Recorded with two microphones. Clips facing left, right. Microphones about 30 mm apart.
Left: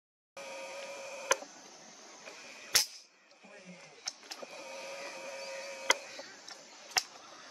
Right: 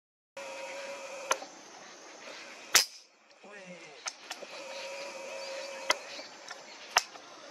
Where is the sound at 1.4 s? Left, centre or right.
Right.